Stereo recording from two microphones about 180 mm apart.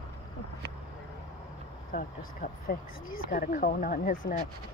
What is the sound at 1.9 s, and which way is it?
Speech, 55° left (ahead or behind).